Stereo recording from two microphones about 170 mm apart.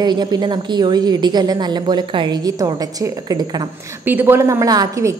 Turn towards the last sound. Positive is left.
turn(degrees=-20)  # may be behind; listen again after turning